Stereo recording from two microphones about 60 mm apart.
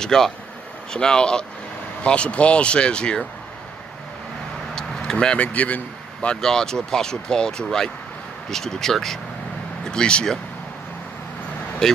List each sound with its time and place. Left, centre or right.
0.0 s speech: centre
4.7 s vehicle: centre
5.1 s speech: centre
6.3 s speech: centre
11.8 s speech: centre